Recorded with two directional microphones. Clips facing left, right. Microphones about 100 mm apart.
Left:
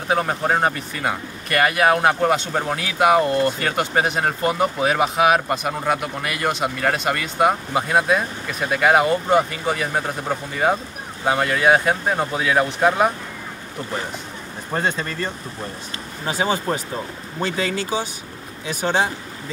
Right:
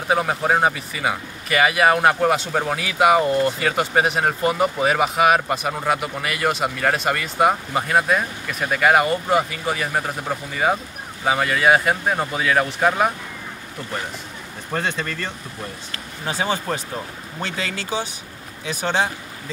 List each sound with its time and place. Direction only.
0.1 s speech: 5° right (ahead or behind)
14.7 s speech: 30° left (ahead or behind)
16.3 s speech: 15° left (ahead or behind)